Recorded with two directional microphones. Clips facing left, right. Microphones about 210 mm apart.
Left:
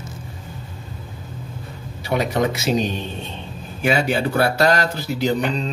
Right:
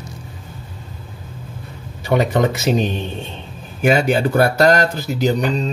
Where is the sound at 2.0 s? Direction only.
45° right (ahead or behind).